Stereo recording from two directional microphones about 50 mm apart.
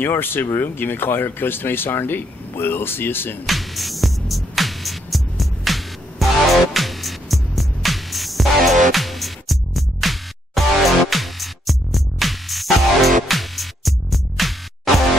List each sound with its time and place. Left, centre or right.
0.0 s speech: left
3.4 s music: centre